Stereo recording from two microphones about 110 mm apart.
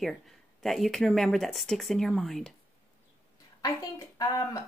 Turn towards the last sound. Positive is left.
turn(degrees=35)  # may be behind; listen again after turning